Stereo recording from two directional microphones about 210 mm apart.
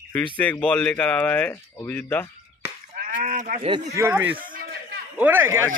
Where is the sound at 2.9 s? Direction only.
35° right (ahead or behind).